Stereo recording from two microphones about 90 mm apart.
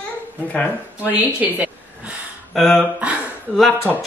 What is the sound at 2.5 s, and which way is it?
Speech, 5° left (ahead or behind).